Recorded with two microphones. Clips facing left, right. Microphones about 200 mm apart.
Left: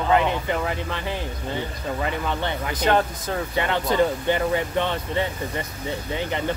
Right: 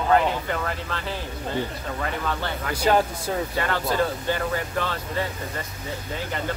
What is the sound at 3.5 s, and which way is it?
Speech, 20° left (ahead or behind).